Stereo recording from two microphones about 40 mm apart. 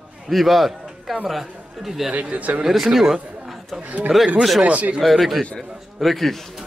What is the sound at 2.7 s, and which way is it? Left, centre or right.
Speech, centre.